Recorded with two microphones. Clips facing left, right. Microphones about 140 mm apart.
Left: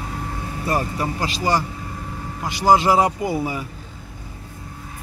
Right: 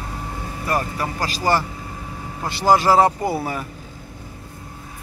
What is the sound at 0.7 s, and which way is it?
Speech, 20° left (ahead or behind).